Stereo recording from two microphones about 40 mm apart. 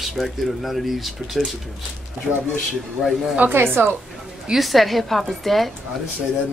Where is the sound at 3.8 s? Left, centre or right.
Right.